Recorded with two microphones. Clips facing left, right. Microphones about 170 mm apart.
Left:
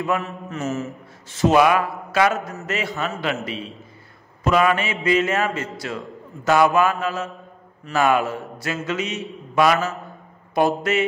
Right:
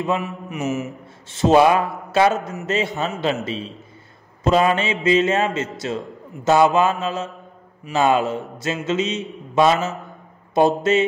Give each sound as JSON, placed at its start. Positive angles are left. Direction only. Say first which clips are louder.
{"t": 0.0, "sound": "mantra", "louder": "right 1 dB", "side_deg": -20}
{"t": 1.3, "sound": "a man's voice", "louder": "right 2 dB", "side_deg": -30}